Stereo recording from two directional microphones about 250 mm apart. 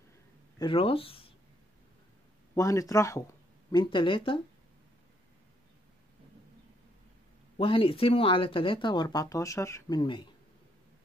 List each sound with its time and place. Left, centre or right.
0.6 s speech: left
2.5 s speech: centre
7.5 s speech: left